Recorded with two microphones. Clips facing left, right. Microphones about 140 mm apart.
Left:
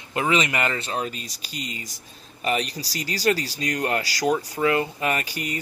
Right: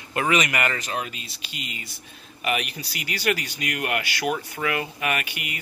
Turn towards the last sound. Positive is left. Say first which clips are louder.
# left 2 dB
turn(degrees=35)  # may be behind; listen again after turning